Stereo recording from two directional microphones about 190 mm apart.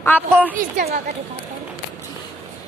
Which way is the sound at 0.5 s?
45° right (ahead or behind).